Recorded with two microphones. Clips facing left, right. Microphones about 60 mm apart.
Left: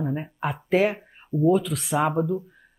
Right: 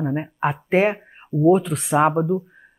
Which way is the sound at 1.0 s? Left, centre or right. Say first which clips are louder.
Right 5 dB; right.